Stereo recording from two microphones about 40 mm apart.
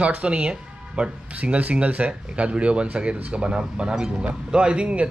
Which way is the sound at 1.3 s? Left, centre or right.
Right.